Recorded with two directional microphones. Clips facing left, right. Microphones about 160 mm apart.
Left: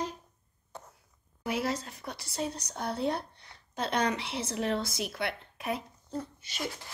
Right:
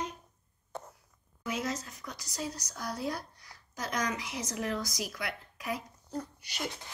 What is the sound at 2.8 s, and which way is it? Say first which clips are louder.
A woman's voice: left 5 dB; 25° left (ahead or behind).